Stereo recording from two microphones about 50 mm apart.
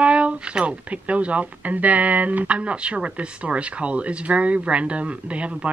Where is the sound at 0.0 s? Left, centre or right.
Right.